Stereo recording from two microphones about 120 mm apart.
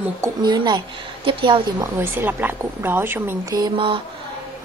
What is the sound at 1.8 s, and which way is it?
A woman's voice, 20° right (ahead or behind).